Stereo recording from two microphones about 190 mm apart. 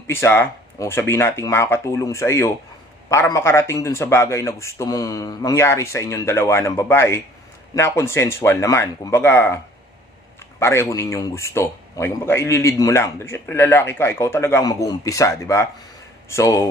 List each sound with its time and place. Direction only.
0.0 s a man's voice: 15° left (ahead or behind)
10.6 s a man's voice: 15° left (ahead or behind)